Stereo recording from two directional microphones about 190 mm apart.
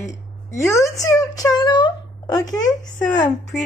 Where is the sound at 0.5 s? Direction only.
15° left (ahead or behind).